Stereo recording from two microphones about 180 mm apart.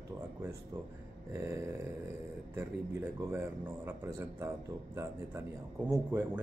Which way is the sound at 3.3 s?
10° right (ahead or behind).